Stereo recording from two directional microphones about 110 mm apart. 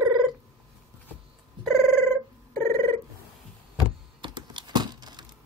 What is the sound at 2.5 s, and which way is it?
Telephone bell ringing, 20° left (ahead or behind).